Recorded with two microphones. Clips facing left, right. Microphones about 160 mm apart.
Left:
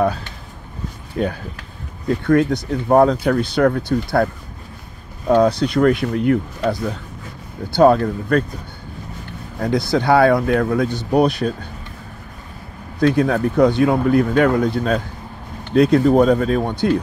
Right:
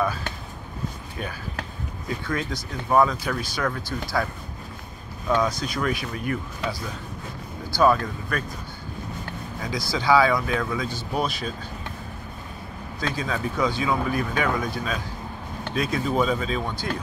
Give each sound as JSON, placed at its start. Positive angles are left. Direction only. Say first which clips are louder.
{"t": 1.2, "sound": "speech", "louder": "left 11 dB", "side_deg": 70}
{"t": 9.6, "sound": "speech", "louder": "left 11 dB", "side_deg": 60}
{"t": 13.0, "sound": "speech", "louder": "left 12 dB", "side_deg": 65}